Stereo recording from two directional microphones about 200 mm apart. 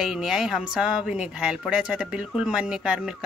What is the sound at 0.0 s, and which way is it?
Speech, 5° right (ahead or behind).